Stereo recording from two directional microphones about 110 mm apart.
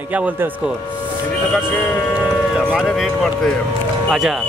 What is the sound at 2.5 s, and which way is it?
Speech, 5° right (ahead or behind).